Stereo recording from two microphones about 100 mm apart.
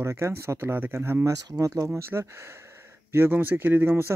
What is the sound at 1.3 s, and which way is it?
Speech, 35° right (ahead or behind).